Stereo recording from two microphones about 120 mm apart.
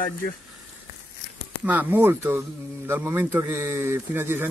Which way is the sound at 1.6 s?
15° right (ahead or behind).